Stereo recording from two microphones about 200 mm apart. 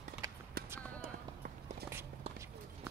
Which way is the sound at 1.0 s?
45° right (ahead or behind).